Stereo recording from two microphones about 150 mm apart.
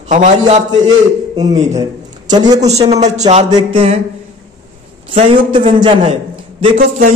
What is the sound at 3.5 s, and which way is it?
Speech, 40° right (ahead or behind).